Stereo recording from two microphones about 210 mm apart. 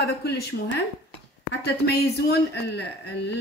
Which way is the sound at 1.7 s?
50° left (ahead or behind).